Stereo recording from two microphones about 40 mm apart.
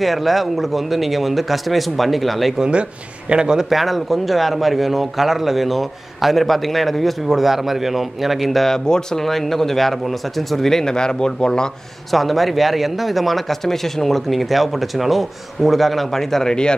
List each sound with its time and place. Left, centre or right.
0.0 s a man's voice: centre
3.3 s speech: centre
3.7 s a man's voice: centre
8.8 s speech: centre
9.2 s speech: centre
12.1 s a man's voice: centre